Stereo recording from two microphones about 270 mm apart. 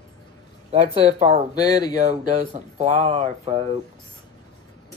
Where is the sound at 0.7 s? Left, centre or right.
Right.